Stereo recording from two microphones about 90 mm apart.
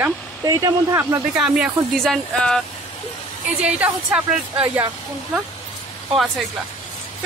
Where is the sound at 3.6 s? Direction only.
15° right (ahead or behind).